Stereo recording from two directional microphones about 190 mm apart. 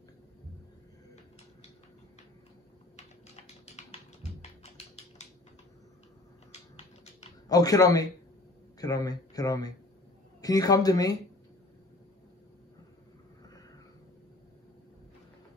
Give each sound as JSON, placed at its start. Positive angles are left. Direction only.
{"t": 3.6, "sound": "typing", "side_deg": 35}
{"t": 6.5, "sound": "typing", "side_deg": 35}
{"t": 7.4, "sound": "a man's voice", "side_deg": 20}